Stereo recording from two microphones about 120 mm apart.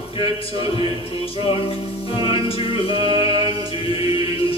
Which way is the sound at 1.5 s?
50° left (ahead or behind).